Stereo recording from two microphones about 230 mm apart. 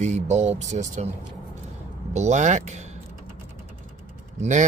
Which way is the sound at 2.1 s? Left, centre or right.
Right.